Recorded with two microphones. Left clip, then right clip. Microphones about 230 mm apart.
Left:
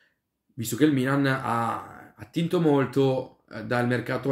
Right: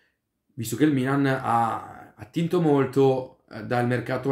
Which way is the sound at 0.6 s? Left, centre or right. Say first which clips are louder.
Even; centre.